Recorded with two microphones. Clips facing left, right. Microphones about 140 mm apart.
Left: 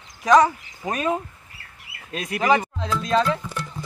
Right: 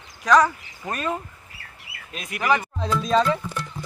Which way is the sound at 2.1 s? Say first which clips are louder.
Left 3 dB; 35° left (ahead or behind).